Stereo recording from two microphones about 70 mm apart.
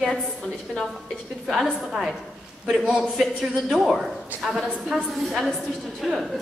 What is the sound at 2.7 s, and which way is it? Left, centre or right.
A woman's voice, centre.